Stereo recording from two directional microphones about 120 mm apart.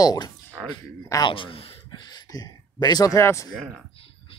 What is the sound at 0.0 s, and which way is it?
Speech, 35° left (ahead or behind).